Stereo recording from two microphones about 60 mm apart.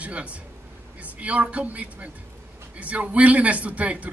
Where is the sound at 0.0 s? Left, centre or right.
Right.